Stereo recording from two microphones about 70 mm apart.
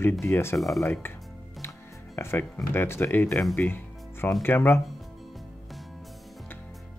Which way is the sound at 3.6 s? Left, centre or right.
Left.